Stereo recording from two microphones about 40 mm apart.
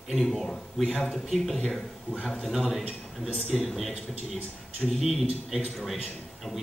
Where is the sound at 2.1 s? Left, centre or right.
Right.